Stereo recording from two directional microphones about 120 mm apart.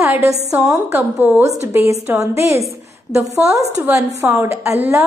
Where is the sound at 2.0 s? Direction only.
25° right (ahead or behind).